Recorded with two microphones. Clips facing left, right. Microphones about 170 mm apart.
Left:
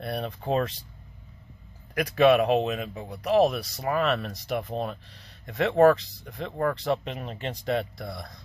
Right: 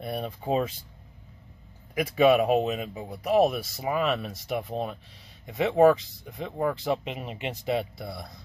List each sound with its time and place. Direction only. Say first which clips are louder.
0.0 s speech: even; 5° right (ahead or behind)
2.0 s speech: left 1 dB; 5° right (ahead or behind)